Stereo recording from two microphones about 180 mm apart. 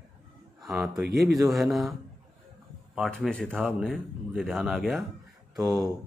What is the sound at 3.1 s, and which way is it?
Speech, 5° left (ahead or behind).